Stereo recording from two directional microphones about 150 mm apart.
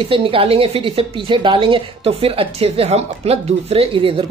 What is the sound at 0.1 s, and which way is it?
A woman's voice, 35° right (ahead or behind).